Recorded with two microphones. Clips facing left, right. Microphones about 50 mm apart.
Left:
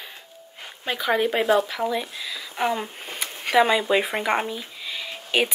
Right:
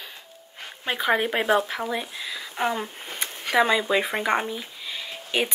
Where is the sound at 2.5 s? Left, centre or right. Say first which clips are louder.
Left 2 dB; centre.